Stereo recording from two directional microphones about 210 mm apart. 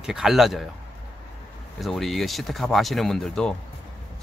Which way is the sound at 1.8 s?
Centre (ahead or behind).